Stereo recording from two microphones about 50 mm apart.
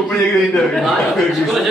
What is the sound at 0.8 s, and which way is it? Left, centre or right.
Speech, centre.